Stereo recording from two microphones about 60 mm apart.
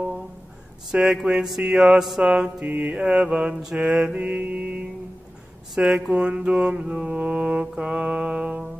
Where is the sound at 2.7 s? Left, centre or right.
Right.